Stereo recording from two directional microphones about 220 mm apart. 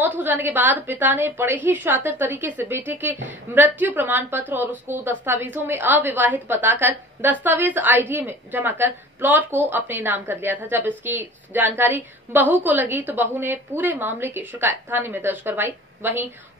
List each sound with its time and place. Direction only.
0.0 s a woman's voice: 10° right (ahead or behind)